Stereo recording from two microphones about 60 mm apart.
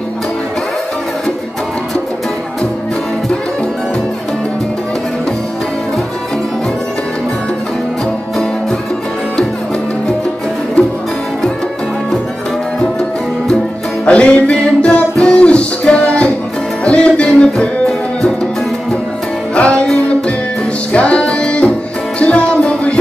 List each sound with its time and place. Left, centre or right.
14.0 s music: centre
19.5 s music: centre